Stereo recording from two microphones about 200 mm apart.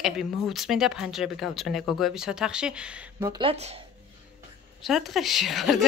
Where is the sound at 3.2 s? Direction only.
20° right (ahead or behind).